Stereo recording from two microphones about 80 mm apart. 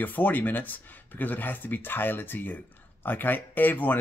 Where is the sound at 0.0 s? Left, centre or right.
Left.